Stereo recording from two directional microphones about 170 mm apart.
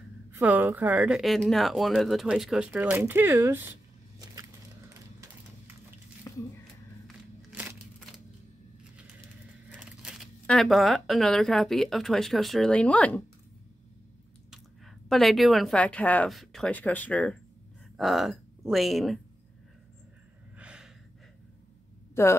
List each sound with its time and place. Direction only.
0.3 s speech: 10° right (ahead or behind)
4.2 s a sound: 20° right (ahead or behind)
6.3 s a sound: 15° left (ahead or behind)
7.5 s crumpling: 10° right (ahead or behind)
9.8 s speech: 5° right (ahead or behind)
14.5 s speech: centre (ahead or behind)
20.5 s gasp: 5° right (ahead or behind)
22.2 s speech: 15° left (ahead or behind)